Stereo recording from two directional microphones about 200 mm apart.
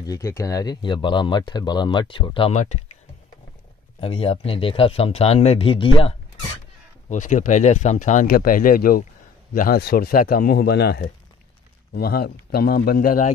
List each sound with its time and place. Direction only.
0.0 s speech: 15° left (ahead or behind); by 3.0 s 35° left (ahead or behind)
4.0 s speech: 30° left (ahead or behind)
7.1 s a man's voice: 40° left (ahead or behind)